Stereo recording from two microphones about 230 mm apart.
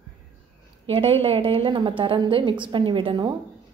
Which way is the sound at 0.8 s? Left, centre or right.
Right.